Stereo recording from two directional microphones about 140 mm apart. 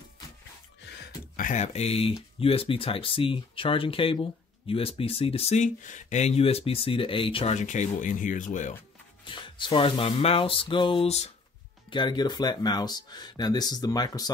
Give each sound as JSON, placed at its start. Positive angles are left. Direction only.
{"t": 1.3, "sound": "speech", "side_deg": 70}
{"t": 7.5, "sound": "speech", "side_deg": 60}
{"t": 9.2, "sound": "speech", "side_deg": 35}
{"t": 11.9, "sound": "speech", "side_deg": 35}